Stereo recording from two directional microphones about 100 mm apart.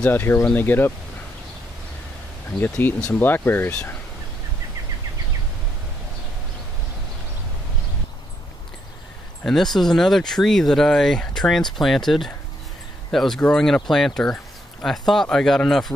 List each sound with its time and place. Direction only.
0.0 s speech: 20° left (ahead or behind)
2.8 s speech: 20° left (ahead or behind)
9.4 s speech: 5° left (ahead or behind)